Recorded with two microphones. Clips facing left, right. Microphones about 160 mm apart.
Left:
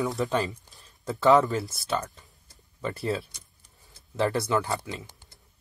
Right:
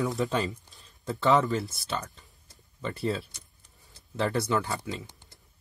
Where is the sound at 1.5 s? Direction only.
Centre (ahead or behind).